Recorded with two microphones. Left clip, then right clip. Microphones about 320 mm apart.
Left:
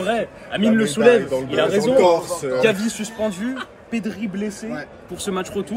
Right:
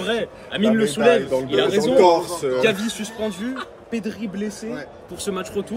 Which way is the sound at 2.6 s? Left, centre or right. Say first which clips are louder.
Left 1 dB; centre.